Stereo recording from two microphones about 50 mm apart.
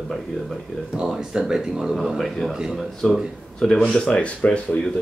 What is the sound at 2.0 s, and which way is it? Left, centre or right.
Speech, centre.